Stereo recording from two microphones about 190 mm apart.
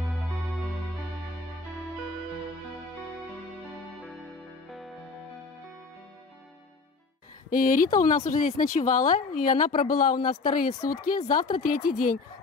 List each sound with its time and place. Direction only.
4.6 s music: centre (ahead or behind)
7.4 s speech: 45° left (ahead or behind)